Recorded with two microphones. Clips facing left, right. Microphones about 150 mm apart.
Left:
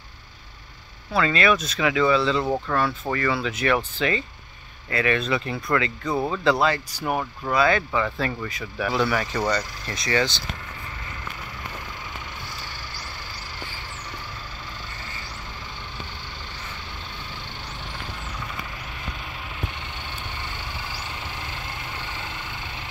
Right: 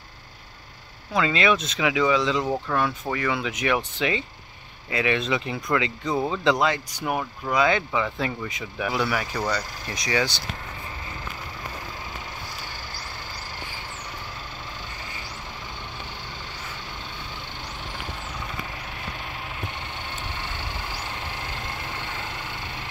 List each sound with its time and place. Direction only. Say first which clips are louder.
1.1 s speech: left 1 dB; 15° right (ahead or behind)